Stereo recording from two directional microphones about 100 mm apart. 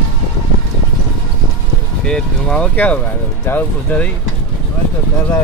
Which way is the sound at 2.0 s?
10° left (ahead or behind).